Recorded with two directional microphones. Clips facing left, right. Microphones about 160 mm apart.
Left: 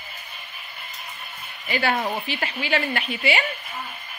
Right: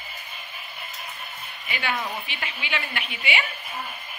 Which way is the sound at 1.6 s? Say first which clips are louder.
Left 6 dB; 40° left (ahead or behind).